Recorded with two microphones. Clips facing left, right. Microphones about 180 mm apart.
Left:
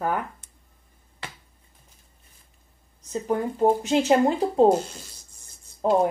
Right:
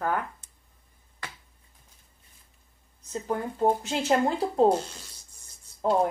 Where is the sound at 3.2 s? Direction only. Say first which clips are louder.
Left 4 dB; 15° left (ahead or behind).